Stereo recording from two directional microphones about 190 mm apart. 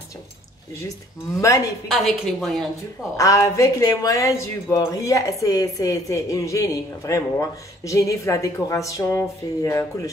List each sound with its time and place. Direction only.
2.0 s a woman's voice: centre (ahead or behind)
3.2 s speech: 15° left (ahead or behind)